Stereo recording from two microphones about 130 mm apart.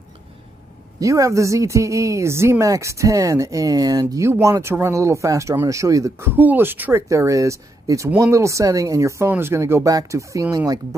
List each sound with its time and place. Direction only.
0.9 s speech: 25° right (ahead or behind)